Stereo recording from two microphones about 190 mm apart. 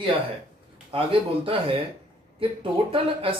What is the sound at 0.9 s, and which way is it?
Speech, 30° right (ahead or behind).